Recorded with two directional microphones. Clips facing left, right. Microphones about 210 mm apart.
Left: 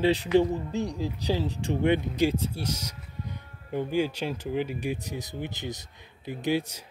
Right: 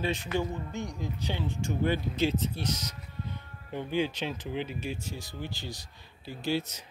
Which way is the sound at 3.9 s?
10° left (ahead or behind).